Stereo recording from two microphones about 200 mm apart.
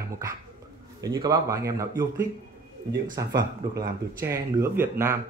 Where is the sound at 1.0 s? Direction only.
20° right (ahead or behind).